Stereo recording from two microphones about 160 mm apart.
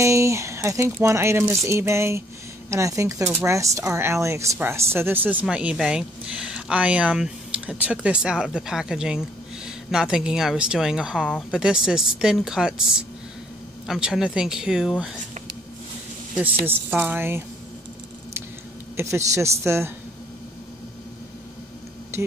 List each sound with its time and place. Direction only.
0.0 s speech: 15° right (ahead or behind)
13.8 s speech: 5° right (ahead or behind)
16.6 s speech: 15° right (ahead or behind)
18.9 s speech: 15° right (ahead or behind)